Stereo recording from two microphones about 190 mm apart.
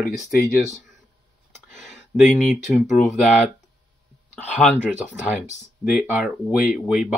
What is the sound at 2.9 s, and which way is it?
Speech, 40° left (ahead or behind).